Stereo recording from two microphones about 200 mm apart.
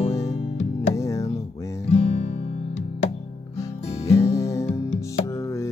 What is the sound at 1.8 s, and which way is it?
Guitar, 30° left (ahead or behind).